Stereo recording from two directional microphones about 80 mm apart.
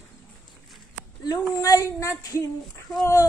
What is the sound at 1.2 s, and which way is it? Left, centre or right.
A woman's voice, left.